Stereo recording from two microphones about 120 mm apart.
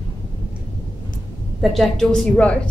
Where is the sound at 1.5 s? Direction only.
Centre (ahead or behind).